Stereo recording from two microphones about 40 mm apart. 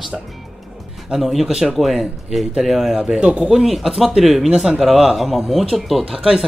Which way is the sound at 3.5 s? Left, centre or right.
Centre.